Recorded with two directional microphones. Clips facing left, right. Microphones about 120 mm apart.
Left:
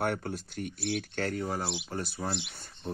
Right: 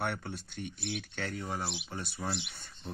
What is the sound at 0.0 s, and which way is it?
Speech, 45° left (ahead or behind).